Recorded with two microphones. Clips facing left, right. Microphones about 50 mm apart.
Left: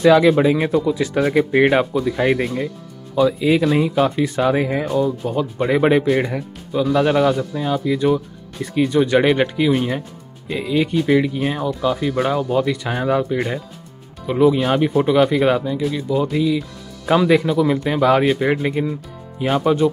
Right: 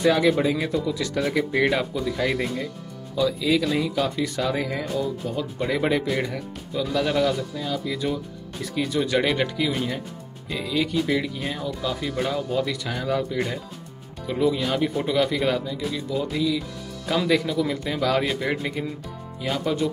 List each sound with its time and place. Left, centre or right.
0.0 s speech: left
0.8 s speech: left
12.8 s speech: left